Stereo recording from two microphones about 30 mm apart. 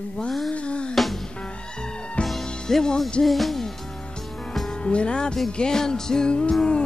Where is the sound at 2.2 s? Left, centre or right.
Left.